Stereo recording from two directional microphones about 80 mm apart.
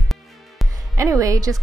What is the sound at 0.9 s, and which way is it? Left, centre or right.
Speech, right.